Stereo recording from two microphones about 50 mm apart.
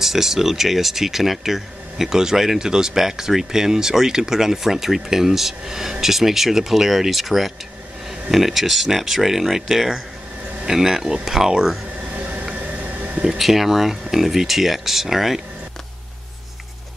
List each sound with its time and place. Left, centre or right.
0.0 s speech: centre
12.5 s a sound: right
13.4 s speech: centre